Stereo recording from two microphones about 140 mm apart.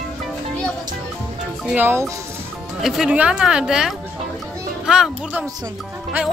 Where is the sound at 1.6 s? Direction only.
10° right (ahead or behind).